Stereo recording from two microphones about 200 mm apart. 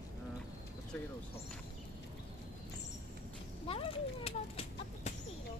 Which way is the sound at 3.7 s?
30° left (ahead or behind).